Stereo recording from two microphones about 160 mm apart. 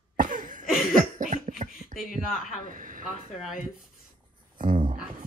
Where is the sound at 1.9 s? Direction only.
60° left (ahead or behind).